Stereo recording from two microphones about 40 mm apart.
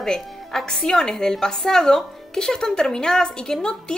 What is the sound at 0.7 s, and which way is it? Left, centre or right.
A woman's voice, centre.